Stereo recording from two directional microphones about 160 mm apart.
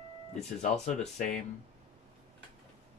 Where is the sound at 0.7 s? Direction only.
45° left (ahead or behind).